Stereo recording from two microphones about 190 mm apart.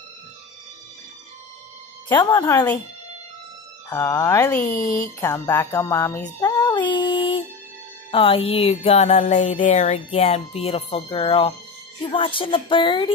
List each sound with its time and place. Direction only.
2.0 s speech: 20° left (ahead or behind)
3.9 s speech: 15° left (ahead or behind)
4.7 s speech: 45° left (ahead or behind)
5.2 s speech: 15° left (ahead or behind)
6.4 s music: 20° left (ahead or behind)
12.0 s speech: 25° left (ahead or behind)